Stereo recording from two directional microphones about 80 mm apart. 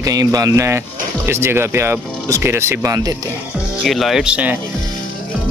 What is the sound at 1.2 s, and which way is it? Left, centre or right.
A man's voice, right.